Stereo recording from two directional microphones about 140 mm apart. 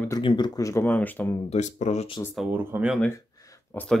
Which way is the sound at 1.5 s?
60° left (ahead or behind).